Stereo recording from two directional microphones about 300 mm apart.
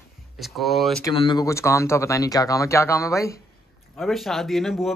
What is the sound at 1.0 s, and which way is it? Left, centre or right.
Speech, centre.